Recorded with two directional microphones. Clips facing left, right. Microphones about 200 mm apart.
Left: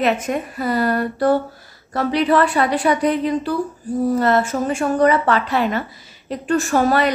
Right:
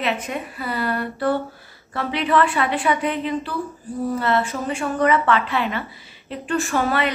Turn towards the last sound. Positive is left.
turn(degrees=40)  # may be behind; listen again after turning